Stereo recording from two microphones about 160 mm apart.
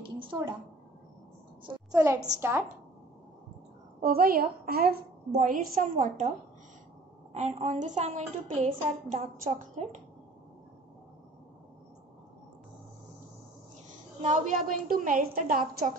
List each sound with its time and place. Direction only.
0.0 s a woman's voice: 30° right (ahead or behind)
1.7 s a woman's voice: 20° right (ahead or behind)
4.0 s a woman's voice: 65° right (ahead or behind); by 6.3 s 50° right (ahead or behind)
7.3 s a woman's voice: 45° right (ahead or behind)
14.2 s a woman's voice: 55° right (ahead or behind)